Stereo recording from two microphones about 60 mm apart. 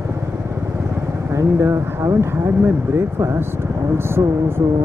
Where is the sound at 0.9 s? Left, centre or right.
Right.